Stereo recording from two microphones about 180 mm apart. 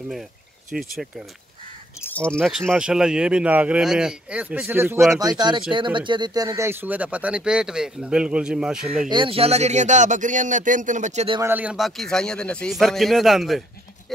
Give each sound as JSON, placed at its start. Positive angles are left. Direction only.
{"t": 0.7, "sound": "speech", "side_deg": 0}
{"t": 2.0, "sound": "speech", "side_deg": 5}
{"t": 9.1, "sound": "speech", "side_deg": -30}
{"t": 11.4, "sound": "speech", "side_deg": -10}